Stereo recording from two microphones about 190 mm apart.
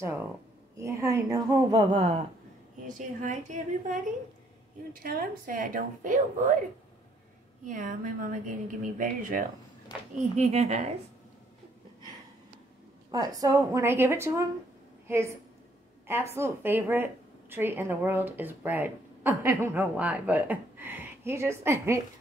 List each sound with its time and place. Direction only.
0.7 s a woman's voice: 15° right (ahead or behind)
2.9 s a woman's voice: 40° right (ahead or behind)
7.6 s a woman's voice: 45° right (ahead or behind)
13.1 s a woman's voice: 20° right (ahead or behind)